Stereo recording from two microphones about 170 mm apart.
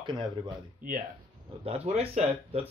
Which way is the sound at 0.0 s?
25° right (ahead or behind).